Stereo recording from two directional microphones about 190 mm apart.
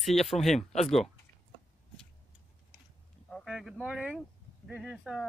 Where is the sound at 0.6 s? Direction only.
35° left (ahead or behind).